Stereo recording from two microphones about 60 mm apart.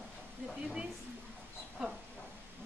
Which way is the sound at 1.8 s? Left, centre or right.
Centre.